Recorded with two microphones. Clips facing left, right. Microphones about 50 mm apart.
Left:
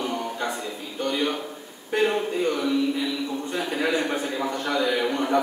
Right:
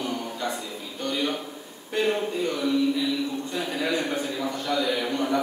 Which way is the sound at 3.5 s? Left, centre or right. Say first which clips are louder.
Left 3 dB; left.